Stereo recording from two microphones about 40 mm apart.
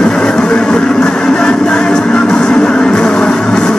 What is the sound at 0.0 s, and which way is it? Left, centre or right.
Music, centre.